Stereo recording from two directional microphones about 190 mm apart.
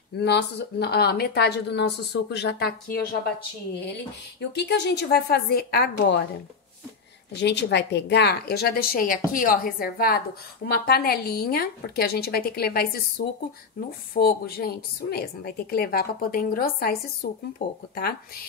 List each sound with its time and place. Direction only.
0.2 s speech: 65° left (ahead or behind)
4.4 s speech: 65° left (ahead or behind)
7.3 s a woman's voice: 65° left (ahead or behind)
14.1 s a woman's voice: 50° left (ahead or behind)
17.6 s speech: 65° left (ahead or behind)
17.9 s a woman's voice: 50° left (ahead or behind)